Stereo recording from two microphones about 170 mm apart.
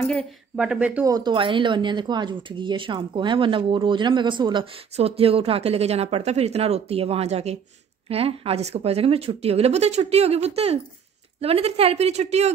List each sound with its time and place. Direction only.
0.6 s speech: 5° right (ahead or behind)
1.0 s speech: 25° right (ahead or behind); by 12.5 s 40° right (ahead or behind)